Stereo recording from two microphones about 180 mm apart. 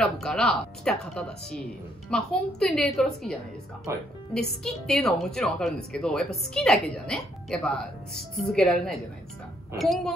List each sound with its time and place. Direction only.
0.0 s a woman's voice: 5° left (ahead or behind)
3.9 s speech: 15° right (ahead or behind)
4.3 s a woman's voice: 5° left (ahead or behind)